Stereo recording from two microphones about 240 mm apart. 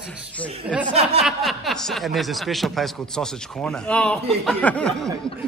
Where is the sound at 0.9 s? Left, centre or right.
Right.